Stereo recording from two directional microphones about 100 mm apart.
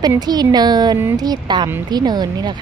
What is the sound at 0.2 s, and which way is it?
Speech, 45° right (ahead or behind).